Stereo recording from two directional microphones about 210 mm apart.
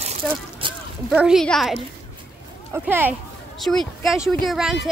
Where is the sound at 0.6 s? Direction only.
25° right (ahead or behind).